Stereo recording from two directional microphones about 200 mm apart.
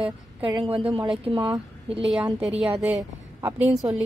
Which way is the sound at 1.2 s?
25° right (ahead or behind).